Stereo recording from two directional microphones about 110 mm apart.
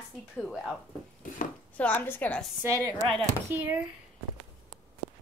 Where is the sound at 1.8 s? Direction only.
15° left (ahead or behind).